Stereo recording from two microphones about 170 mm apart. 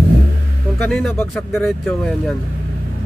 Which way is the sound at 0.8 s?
Centre (ahead or behind).